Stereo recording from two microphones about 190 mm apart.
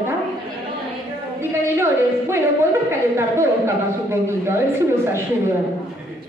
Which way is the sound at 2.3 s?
15° right (ahead or behind).